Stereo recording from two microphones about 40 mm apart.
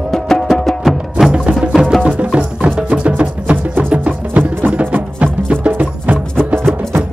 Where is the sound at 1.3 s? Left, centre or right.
Right.